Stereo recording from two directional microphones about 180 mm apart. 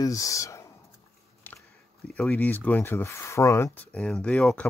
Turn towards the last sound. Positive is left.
turn(degrees=5)  # may be behind; listen again after turning